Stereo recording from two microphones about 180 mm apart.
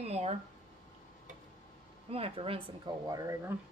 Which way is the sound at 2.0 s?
35° right (ahead or behind).